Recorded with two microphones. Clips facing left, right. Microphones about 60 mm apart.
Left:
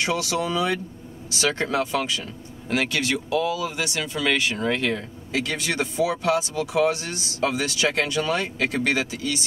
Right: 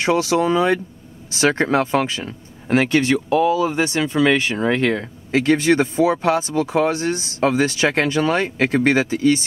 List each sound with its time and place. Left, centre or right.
0.0 s speech: right